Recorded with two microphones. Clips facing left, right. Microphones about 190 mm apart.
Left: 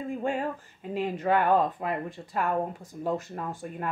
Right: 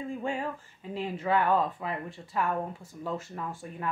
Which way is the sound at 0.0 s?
55° left (ahead or behind).